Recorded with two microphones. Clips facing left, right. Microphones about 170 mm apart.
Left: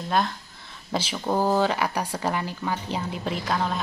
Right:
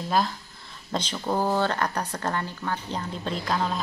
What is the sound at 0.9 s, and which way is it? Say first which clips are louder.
Speech: left 2 dB; 5° left (ahead or behind).